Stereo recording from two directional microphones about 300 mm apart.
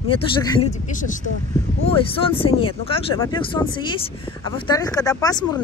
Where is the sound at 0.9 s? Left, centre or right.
Left.